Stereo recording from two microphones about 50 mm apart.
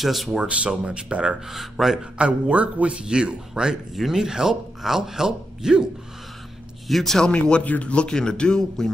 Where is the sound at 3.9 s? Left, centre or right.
Centre.